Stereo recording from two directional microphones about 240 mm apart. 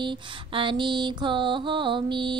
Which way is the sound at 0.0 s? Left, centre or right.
Right.